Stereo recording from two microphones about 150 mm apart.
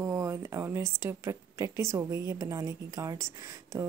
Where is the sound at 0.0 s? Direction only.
20° right (ahead or behind).